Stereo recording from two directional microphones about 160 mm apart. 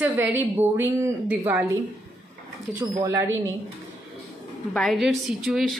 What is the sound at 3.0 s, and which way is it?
Speech, 20° right (ahead or behind).